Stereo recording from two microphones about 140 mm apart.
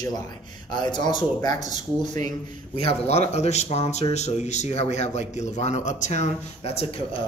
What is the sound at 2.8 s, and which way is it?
Speech, 50° left (ahead or behind).